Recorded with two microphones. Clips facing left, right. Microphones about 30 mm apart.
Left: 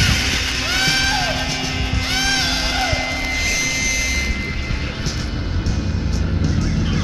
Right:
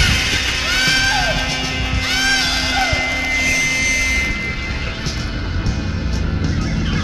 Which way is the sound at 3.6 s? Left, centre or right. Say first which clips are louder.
Right 4 dB; centre.